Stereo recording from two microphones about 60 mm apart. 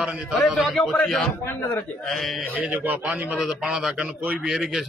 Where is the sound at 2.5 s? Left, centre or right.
Right.